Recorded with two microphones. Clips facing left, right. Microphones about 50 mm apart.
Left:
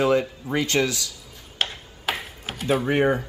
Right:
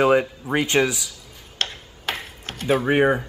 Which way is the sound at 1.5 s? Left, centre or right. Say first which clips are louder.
Even; centre.